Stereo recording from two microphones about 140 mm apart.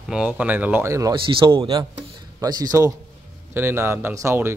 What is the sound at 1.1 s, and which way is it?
Speech, 40° right (ahead or behind).